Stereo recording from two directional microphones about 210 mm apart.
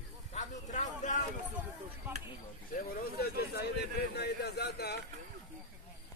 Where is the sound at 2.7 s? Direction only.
45° left (ahead or behind).